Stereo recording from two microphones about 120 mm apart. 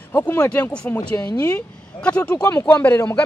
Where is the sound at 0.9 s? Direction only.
25° left (ahead or behind).